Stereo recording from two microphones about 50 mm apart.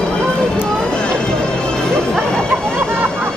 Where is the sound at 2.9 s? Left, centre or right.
Right.